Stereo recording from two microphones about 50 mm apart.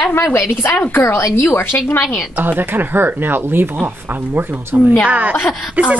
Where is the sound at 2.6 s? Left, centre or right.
Right.